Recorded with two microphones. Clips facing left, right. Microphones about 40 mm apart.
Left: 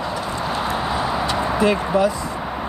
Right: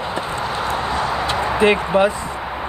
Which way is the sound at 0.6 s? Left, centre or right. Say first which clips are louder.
Right 2 dB; centre.